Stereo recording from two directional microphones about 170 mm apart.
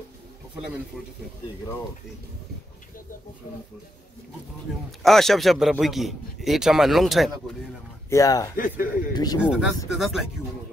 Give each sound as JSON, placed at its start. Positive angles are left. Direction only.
{"t": 1.0, "sound": "a man's voice", "side_deg": 0}
{"t": 5.0, "sound": "a man's voice", "side_deg": 0}
{"t": 8.1, "sound": "a man's voice", "side_deg": 20}
{"t": 8.5, "sound": "a man's voice", "side_deg": 55}
{"t": 9.1, "sound": "a man's voice", "side_deg": 20}
{"t": 9.4, "sound": "a man's voice", "side_deg": 0}